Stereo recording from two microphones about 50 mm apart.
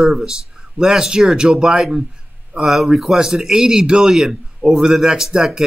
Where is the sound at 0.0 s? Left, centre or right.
Centre.